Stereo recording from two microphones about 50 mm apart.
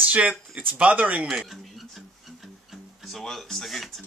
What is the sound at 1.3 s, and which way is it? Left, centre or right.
Speech, centre.